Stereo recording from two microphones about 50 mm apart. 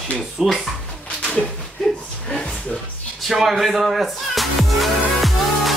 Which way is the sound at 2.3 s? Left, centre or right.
Left.